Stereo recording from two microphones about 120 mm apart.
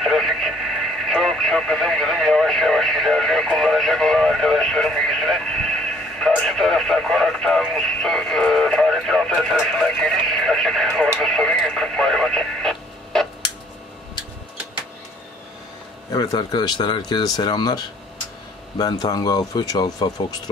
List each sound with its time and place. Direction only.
0.0 s radio: centre (ahead or behind)
1.0 s speech: centre (ahead or behind)
16.1 s speech: 30° left (ahead or behind)